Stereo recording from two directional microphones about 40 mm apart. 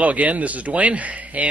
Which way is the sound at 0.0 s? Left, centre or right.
Right.